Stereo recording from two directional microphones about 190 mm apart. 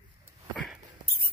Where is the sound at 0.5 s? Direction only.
Centre (ahead or behind).